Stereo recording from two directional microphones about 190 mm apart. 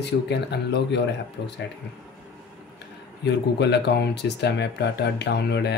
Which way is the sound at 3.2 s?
65° left (ahead or behind).